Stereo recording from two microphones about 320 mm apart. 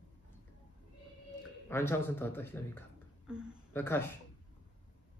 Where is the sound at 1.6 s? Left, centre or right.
Centre.